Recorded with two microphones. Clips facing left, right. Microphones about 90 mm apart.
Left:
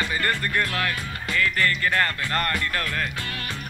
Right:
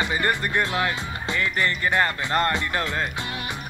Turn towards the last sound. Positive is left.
turn(degrees=-20)  # may be behind; listen again after turning